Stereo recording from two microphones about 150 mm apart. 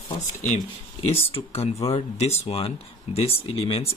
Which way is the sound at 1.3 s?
40° left (ahead or behind).